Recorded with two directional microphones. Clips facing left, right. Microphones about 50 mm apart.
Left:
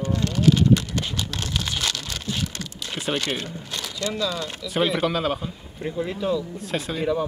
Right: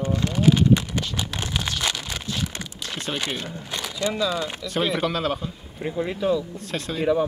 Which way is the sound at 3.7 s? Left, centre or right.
Centre.